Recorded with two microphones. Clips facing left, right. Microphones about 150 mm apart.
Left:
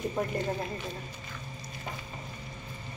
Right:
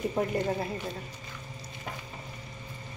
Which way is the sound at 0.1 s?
5° right (ahead or behind).